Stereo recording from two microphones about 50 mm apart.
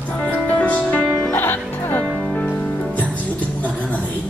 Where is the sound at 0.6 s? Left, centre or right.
Left.